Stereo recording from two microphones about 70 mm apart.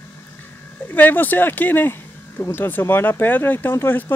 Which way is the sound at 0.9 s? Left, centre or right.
Left.